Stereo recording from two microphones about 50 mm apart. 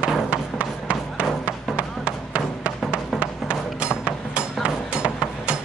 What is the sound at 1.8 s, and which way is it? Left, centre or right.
Music, right.